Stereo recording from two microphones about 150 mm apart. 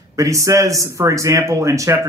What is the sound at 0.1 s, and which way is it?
Speech, 20° right (ahead or behind).